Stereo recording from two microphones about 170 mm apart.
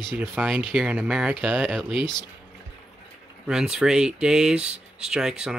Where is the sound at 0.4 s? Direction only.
5° right (ahead or behind).